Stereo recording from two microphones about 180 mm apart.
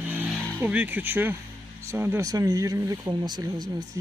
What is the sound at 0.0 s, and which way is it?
Vehicle, 10° right (ahead or behind).